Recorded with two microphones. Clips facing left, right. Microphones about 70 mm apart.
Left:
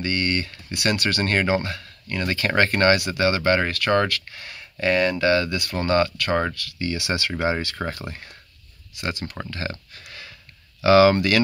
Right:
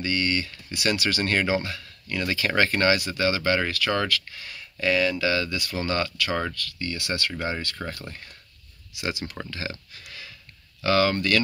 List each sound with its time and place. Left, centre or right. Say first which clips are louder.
0.0 s speech: left 1 dB; centre
6.5 s speech: left 4 dB; centre
7.8 s speech: left 5 dB; left
8.9 s speech: left 1 dB; centre
9.6 s a sound: left 3 dB; centre
10.8 s speech: left 7 dB; centre